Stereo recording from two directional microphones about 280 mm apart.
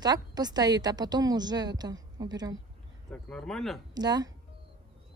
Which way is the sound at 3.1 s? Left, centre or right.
Centre.